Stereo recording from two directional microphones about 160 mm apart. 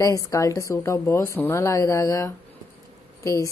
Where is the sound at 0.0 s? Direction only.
20° left (ahead or behind).